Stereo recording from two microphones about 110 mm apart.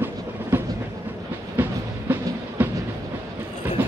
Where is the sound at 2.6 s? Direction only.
15° right (ahead or behind).